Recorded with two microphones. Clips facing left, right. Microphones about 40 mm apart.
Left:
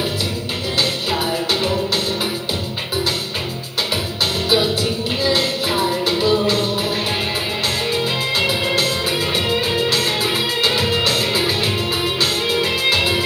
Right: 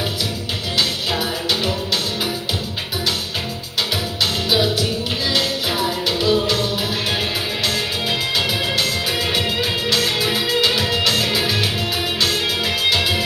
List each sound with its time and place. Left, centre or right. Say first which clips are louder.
3.9 s music: left 1 dB; left
10.6 s music: left 2 dB; left